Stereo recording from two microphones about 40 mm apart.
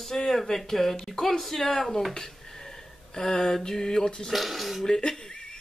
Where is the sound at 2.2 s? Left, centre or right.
Centre.